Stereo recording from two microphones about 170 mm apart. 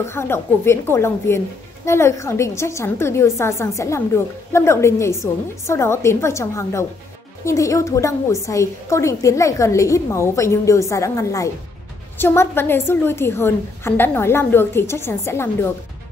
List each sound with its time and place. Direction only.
0.0 s a woman's voice: 15° left (ahead or behind)